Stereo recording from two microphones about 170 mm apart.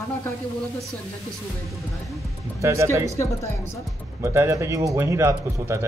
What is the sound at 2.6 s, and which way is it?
Speech, 15° right (ahead or behind).